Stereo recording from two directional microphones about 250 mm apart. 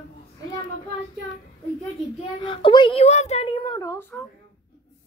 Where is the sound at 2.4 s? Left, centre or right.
Centre.